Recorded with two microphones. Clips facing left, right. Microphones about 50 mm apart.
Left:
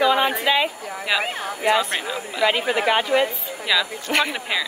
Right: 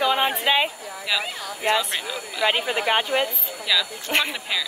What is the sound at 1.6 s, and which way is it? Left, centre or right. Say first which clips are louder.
Speech: left 3 dB; left.